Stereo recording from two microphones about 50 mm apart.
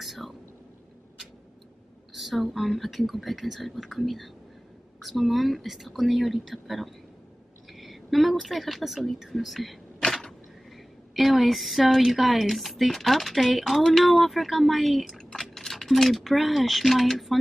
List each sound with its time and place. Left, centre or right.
0.0 s whispering: centre
2.1 s speech: centre